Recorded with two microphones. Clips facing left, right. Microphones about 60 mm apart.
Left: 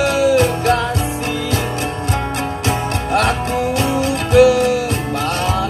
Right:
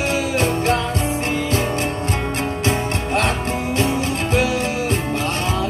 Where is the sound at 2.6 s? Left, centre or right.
Right.